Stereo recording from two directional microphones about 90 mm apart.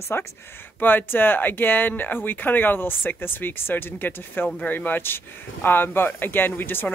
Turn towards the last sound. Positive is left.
turn(degrees=25)  # may be behind; listen again after turning